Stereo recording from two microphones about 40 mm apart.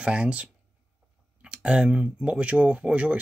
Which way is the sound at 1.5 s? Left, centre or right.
Right.